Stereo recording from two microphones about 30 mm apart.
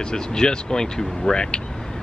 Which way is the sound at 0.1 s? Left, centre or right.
Left.